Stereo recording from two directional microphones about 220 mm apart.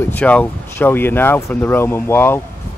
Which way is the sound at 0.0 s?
5° left (ahead or behind).